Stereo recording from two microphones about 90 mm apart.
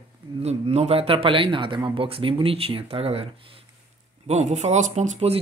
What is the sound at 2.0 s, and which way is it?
Speech, 85° right.